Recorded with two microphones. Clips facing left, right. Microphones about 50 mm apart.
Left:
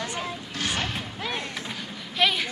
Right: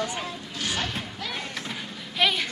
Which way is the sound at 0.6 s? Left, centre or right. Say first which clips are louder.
Left 1 dB; left.